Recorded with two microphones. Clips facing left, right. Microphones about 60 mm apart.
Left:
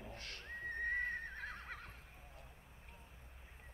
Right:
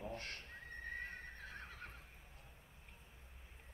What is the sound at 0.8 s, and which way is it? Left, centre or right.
Neigh, left.